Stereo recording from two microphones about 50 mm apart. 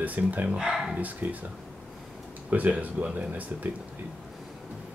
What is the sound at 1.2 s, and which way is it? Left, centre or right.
Speech, right.